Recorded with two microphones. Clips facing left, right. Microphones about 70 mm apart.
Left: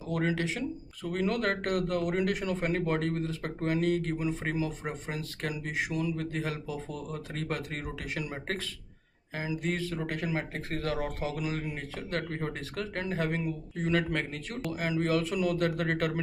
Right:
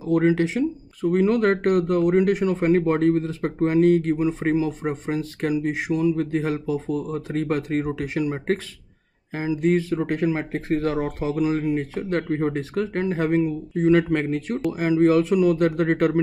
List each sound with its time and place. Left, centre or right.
0.1 s speech: right